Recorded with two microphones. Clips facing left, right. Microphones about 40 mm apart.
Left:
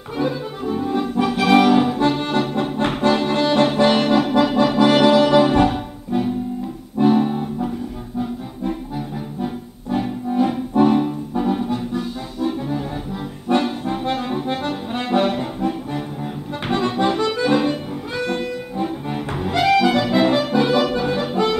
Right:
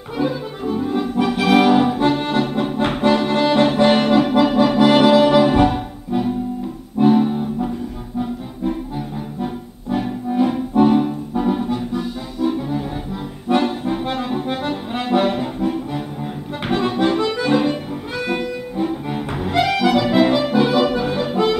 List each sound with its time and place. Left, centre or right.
0.2 s accordion: centre
7.0 s music: centre
9.4 s music: centre
13.5 s accordion: centre
18.2 s music: centre